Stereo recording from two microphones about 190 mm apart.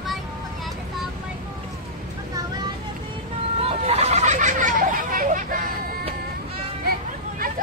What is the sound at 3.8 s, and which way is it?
Hubbub, 35° right (ahead or behind).